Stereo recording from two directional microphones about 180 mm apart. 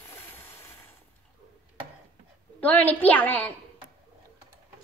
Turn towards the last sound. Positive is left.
turn(degrees=10)  # may be behind; listen again after turning